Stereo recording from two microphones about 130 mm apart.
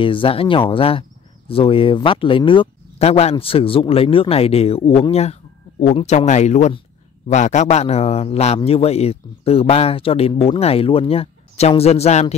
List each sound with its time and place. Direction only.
0.0 s a man's voice: 40° left (ahead or behind)
3.0 s a man's voice: 55° left (ahead or behind)
5.1 s a sound: 55° left (ahead or behind)
5.9 s a man's voice: 60° left (ahead or behind)